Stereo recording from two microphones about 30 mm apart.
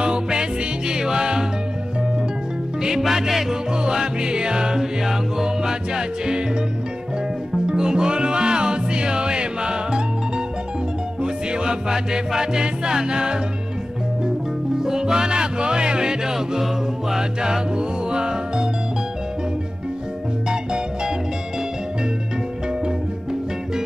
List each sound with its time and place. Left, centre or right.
0.0 s music: right
3.0 s music: centre
3.7 s music: right
7.5 s music: right
14.8 s music: centre
16.3 s music: centre; by 18.7 s right
20.4 s music: right